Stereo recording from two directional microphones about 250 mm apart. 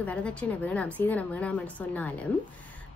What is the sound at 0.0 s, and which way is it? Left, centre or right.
A woman's voice, centre.